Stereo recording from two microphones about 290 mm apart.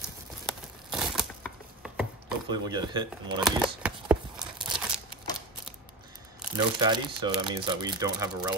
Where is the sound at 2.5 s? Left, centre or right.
Centre.